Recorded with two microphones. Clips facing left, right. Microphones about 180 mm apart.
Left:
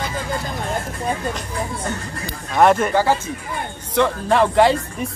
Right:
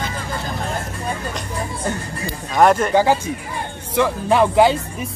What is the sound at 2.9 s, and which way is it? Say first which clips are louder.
Speech: right 2 dB; 15° right (ahead or behind).